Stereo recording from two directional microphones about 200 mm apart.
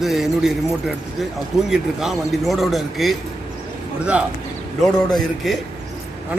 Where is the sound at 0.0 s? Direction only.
Centre (ahead or behind).